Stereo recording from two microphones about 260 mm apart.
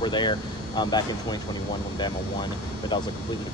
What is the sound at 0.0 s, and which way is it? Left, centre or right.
Speech, centre.